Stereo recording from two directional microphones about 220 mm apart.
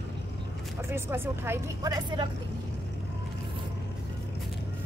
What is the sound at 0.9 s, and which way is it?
Speech, 10° right (ahead or behind).